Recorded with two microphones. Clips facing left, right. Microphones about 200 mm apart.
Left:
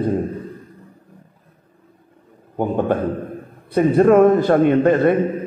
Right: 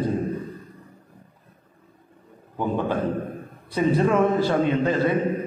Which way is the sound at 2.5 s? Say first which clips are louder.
Left 5 dB; 55° left (ahead or behind).